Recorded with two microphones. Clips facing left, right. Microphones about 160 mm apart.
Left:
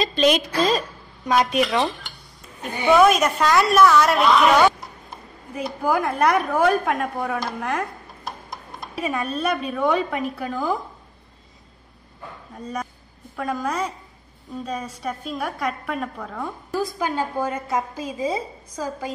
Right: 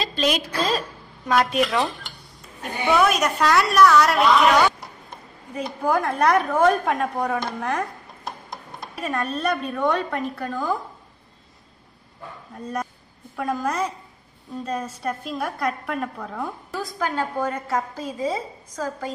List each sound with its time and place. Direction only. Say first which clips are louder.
0.0 s a woman's voice: left 5 dB; 5° right (ahead or behind)
1.2 s speech: left 1 dB; 15° left (ahead or behind)
1.5 s a woman's voice: left 1 dB; centre (ahead or behind)
3.0 s a woman's voice: left 3 dB; centre (ahead or behind)
9.0 s a woman's voice: even; 5° left (ahead or behind)
12.5 s a woman's voice: right 1 dB; centre (ahead or behind)